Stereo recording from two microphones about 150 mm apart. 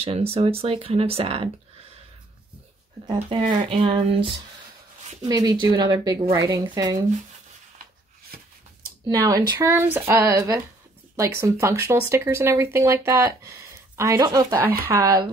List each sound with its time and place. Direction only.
0.3 s speech: 40° right (ahead or behind)
3.1 s speech: 35° right (ahead or behind)
9.1 s speech: 20° right (ahead or behind)